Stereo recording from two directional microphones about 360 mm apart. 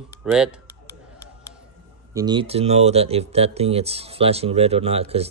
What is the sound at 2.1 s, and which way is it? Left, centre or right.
Speech, centre.